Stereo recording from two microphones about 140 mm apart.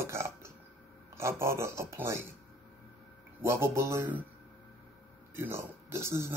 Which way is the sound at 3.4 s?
15° right (ahead or behind).